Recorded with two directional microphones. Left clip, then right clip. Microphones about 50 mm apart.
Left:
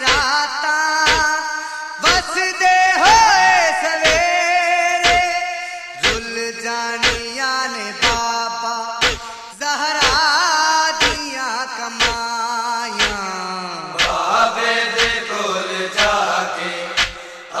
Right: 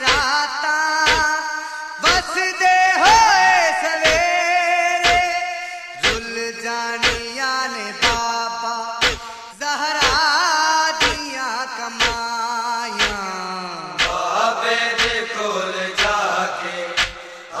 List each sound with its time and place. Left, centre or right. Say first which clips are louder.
0.0 s music: left 1 dB; right
2.0 s a sound: left 1 dB; right
6.0 s music: left 1 dB; right
13.9 s mantra: left 3 dB; right